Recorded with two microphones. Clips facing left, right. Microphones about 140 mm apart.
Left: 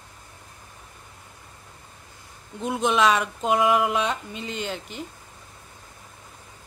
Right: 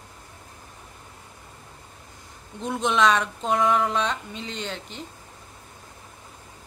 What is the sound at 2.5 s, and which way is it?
Speech, 5° left (ahead or behind).